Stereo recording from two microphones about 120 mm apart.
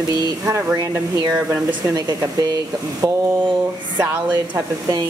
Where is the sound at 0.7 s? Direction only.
30° right (ahead or behind).